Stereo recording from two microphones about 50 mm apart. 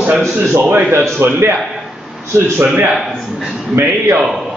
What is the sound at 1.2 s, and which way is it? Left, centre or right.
Speech, right.